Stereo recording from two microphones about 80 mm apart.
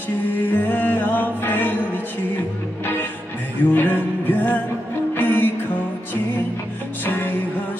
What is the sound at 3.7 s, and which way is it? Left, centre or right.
Music, left.